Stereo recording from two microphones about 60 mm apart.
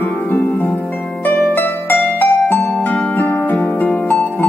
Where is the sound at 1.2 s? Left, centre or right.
Left.